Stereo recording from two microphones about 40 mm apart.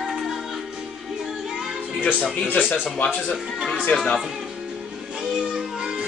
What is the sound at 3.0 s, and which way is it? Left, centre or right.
Speech, left.